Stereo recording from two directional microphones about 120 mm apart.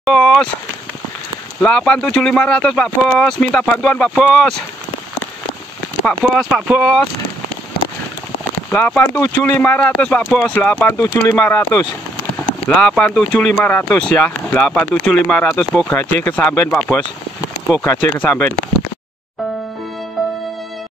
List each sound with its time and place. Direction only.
0.0 s speech: centre (ahead or behind)
1.6 s speech: 10° left (ahead or behind)
6.0 s speech: 5° left (ahead or behind)
8.6 s speech: 15° left (ahead or behind)
12.6 s speech: 5° left (ahead or behind)
15.9 s speech: 20° left (ahead or behind)
18.2 s speech: 20° left (ahead or behind)